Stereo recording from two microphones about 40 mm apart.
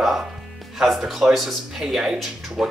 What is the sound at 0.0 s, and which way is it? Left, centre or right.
Music, centre.